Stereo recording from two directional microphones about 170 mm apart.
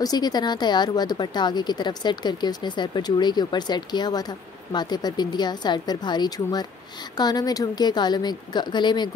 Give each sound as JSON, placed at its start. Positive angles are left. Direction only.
{"t": 0.0, "sound": "speech", "side_deg": 25}